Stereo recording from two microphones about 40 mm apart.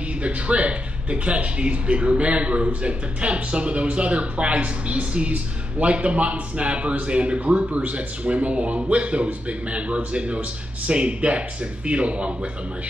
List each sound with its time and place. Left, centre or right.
0.2 s a man's voice: right